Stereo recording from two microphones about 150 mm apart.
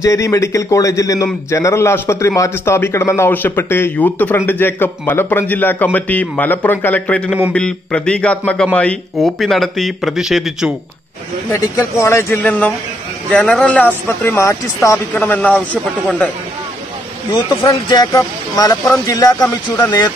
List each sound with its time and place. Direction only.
0.0 s a man's voice: 20° left (ahead or behind); by 10.7 s centre (ahead or behind)
11.5 s a man's voice: 15° left (ahead or behind)
17.3 s a man's voice: 25° left (ahead or behind)